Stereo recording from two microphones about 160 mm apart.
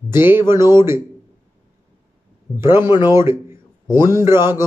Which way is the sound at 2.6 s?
15° right (ahead or behind).